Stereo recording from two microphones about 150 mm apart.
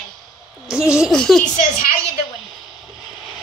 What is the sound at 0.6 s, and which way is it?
Speech, 5° right (ahead or behind).